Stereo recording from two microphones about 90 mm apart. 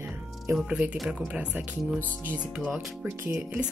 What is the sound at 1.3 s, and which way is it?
A woman's voice, 15° right (ahead or behind).